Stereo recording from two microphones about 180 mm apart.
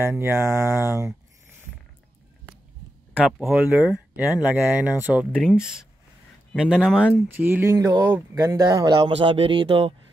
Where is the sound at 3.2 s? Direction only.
5° right (ahead or behind).